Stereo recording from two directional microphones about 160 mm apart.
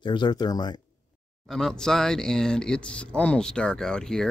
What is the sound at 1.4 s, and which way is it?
Speech, 5° left (ahead or behind).